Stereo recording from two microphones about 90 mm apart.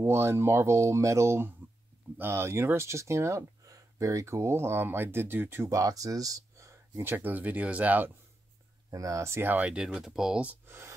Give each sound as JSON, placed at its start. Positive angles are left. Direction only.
{"t": 0.0, "sound": "speech", "side_deg": -30}
{"t": 5.7, "sound": "speech", "side_deg": -40}
{"t": 8.9, "sound": "speech", "side_deg": -35}
{"t": 9.7, "sound": "speech", "side_deg": -10}